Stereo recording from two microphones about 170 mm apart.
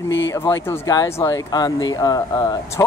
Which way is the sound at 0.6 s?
15° left (ahead or behind).